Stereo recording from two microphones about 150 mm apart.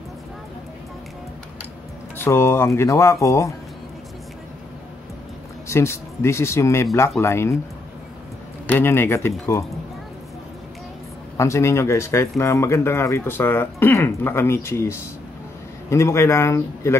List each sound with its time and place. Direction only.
2.1 s speech: 15° left (ahead or behind)
5.7 s speech: 20° left (ahead or behind)
8.6 s speech: 15° left (ahead or behind)
11.3 s speech: 20° left (ahead or behind)